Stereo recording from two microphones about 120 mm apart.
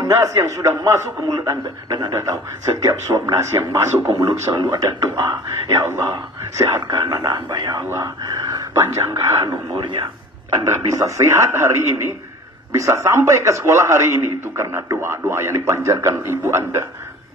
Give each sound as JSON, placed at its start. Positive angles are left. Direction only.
{"t": 0.0, "sound": "a man's voice", "side_deg": -25}
{"t": 5.9, "sound": "a man's voice", "side_deg": -20}
{"t": 7.8, "sound": "a man's voice", "side_deg": -20}